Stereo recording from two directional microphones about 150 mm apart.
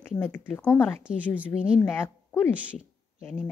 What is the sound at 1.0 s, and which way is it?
Speech, 10° right (ahead or behind).